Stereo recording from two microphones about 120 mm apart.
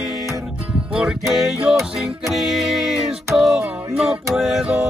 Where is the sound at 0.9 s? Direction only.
5° right (ahead or behind).